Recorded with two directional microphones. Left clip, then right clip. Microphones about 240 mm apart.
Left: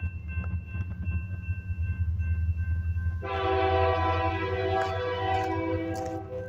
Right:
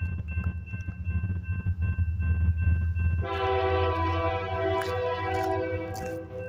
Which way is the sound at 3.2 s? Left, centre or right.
Centre.